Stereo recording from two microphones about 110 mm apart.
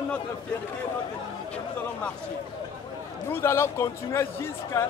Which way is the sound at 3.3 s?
25° left (ahead or behind).